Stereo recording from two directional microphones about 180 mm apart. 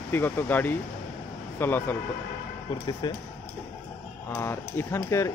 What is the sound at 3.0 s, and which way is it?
Speech, 25° left (ahead or behind).